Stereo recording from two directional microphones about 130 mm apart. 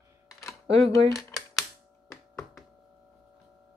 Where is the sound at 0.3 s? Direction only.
25° left (ahead or behind).